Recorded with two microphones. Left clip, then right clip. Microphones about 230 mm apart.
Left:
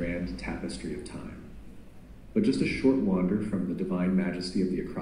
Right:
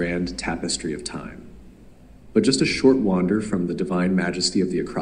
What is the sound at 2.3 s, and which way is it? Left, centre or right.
A man's voice, right.